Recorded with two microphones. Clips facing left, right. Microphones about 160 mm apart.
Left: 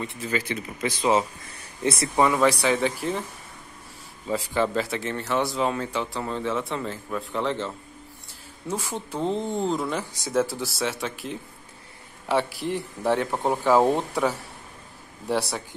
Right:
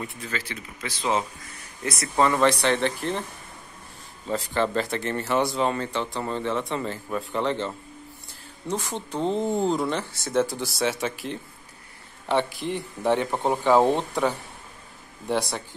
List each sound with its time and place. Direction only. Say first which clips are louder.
0.0 s speech: left 3 dB; centre (ahead or behind)
0.3 s speech: left 6 dB; 15° left (ahead or behind)
2.1 s speech: right 1 dB; 10° left (ahead or behind)
4.3 s speech: even; 5° left (ahead or behind)